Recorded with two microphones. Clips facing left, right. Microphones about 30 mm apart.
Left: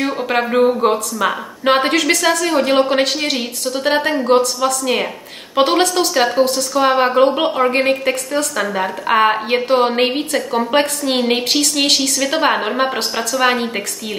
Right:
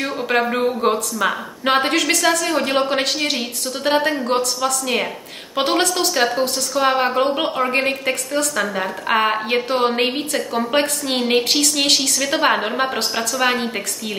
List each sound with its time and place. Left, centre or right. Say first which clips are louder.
0.0 s a woman's voice: left 2 dB; centre